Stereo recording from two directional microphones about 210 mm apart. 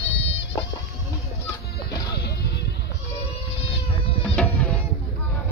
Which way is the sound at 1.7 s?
50° left (ahead or behind).